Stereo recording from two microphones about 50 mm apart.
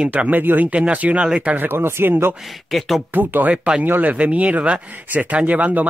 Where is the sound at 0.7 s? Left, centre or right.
Right.